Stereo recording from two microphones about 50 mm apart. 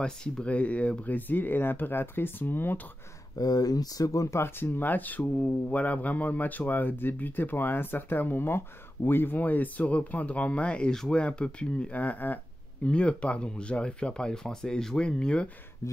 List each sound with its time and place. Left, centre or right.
0.0 s speech: centre; by 2.8 s left
4.1 s speech: left
4.6 s speech: left
10.9 s speech: centre
11.1 s speech: left
12.0 s speech: left
12.8 s speech: left